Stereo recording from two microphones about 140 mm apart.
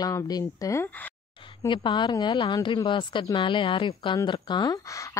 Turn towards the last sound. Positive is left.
turn(degrees=30)  # may be behind; listen again after turning